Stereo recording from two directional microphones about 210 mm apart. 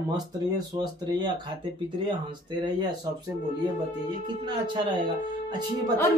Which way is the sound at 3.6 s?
20° right (ahead or behind).